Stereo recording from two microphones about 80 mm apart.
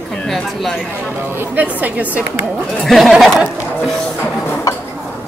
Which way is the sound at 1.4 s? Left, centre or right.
Right.